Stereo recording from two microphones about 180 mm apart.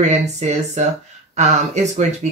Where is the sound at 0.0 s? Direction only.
40° right (ahead or behind).